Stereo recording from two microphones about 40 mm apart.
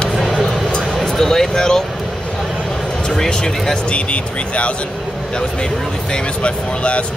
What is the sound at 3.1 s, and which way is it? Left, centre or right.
Speech, centre.